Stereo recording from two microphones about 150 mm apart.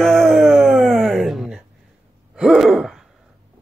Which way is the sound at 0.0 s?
Centre (ahead or behind).